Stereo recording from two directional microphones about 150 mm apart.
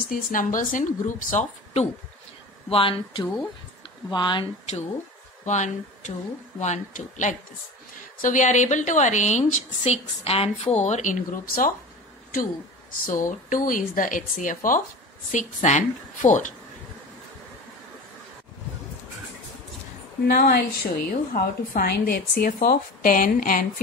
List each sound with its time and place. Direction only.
0.1 s speech: 65° left (ahead or behind)
2.7 s speech: 35° left (ahead or behind)
5.4 s a woman's voice: 50° left (ahead or behind)
13.0 s speech: 60° left (ahead or behind)
15.3 s a woman's voice: 50° left (ahead or behind)
20.2 s a woman's voice: 80° left